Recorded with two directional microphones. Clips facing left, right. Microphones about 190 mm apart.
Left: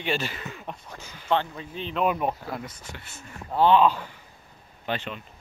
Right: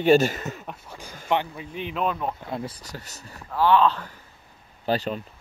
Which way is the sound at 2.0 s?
15° left (ahead or behind).